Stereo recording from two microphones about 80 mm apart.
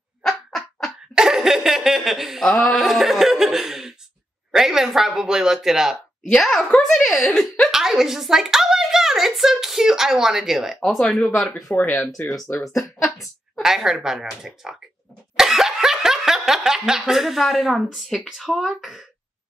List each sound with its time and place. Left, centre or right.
0.2 s a sound: centre
2.5 s speech: centre
12.2 s speech: left
12.5 s speech: centre
15.3 s laughter: centre